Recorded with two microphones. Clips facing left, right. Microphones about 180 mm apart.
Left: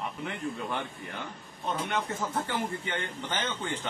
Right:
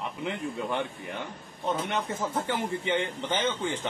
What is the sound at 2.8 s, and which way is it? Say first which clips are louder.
A man's voice: right 6 dB; 20° right (ahead or behind).